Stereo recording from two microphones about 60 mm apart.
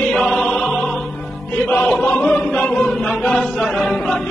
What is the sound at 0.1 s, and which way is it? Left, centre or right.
Music, centre.